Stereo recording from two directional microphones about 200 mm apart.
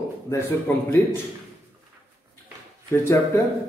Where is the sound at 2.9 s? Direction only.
10° left (ahead or behind).